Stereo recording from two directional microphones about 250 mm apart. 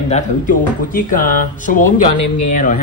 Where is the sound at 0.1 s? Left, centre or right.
Left.